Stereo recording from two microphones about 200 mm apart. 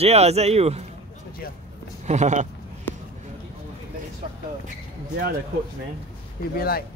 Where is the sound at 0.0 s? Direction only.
30° right (ahead or behind).